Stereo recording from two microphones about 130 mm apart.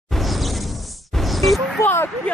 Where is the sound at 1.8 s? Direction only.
15° left (ahead or behind).